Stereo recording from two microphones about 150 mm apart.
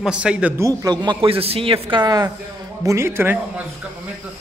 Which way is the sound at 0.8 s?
30° right (ahead or behind).